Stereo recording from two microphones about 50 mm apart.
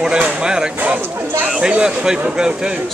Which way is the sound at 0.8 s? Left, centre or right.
Right.